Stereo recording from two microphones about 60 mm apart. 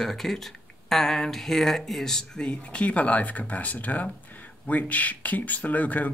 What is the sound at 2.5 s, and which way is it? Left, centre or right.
Speech, left.